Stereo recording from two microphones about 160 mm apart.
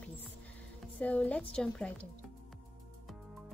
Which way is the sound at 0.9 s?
10° left (ahead or behind).